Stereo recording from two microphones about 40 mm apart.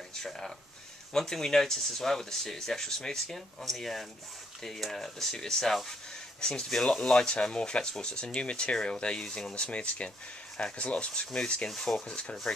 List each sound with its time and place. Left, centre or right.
1.1 s speech: centre; by 11.7 s left
11.7 s speech: centre